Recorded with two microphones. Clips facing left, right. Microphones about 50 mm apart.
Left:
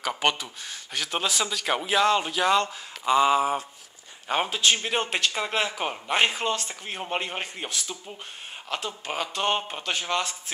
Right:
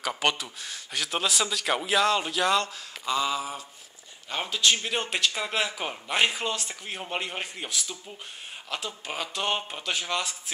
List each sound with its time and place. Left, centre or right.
0.0 s a man's voice: centre
3.1 s a sound: left
4.5 s a man's voice: centre